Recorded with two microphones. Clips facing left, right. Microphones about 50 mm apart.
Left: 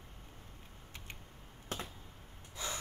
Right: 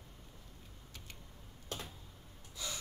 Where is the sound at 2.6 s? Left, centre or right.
Left.